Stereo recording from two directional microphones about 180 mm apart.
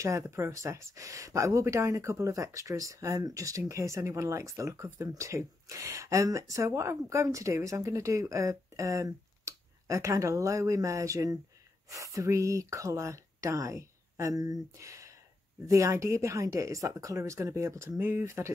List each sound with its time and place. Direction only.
0.0 s speech: 15° right (ahead or behind)